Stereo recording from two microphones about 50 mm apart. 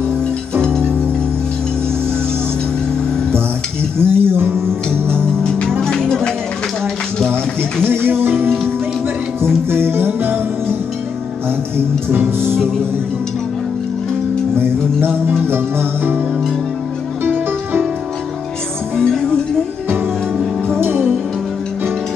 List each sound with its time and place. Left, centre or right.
0.6 s music: right
4.0 s music: right
5.4 s music: centre
7.8 s music: right
9.7 s music: right
12.1 s music: right
14.6 s music: right
17.2 s music: right
18.9 s music: centre
20.8 s music: right